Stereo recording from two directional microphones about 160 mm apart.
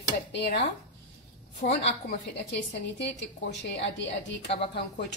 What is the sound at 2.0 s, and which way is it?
A woman's voice, 90° left.